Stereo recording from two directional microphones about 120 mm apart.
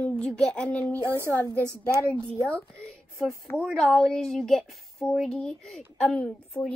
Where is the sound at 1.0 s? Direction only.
20° right (ahead or behind).